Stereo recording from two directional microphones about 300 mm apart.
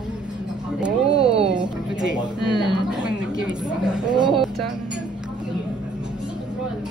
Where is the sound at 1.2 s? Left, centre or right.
Centre.